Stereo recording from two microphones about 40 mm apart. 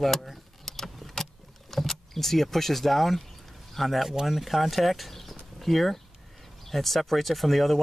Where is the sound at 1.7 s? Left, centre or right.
Centre.